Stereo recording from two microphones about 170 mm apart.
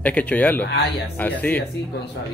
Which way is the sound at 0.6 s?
75° left (ahead or behind).